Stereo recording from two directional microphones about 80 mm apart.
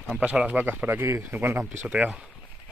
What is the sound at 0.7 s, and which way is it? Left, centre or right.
Speech, right.